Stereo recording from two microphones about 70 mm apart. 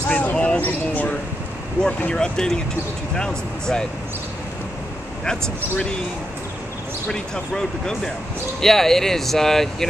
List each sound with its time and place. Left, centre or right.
0.1 s a sound: left
2.0 s speech: centre
5.2 s speech: centre
7.1 s speech: centre